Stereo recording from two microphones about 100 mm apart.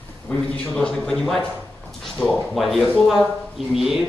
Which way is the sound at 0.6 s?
10° left (ahead or behind).